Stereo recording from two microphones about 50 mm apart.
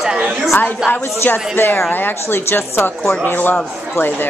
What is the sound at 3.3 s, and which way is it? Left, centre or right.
A woman's voice, left.